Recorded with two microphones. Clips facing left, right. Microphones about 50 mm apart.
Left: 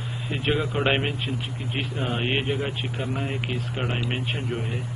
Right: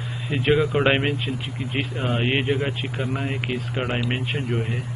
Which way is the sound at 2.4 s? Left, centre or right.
Right.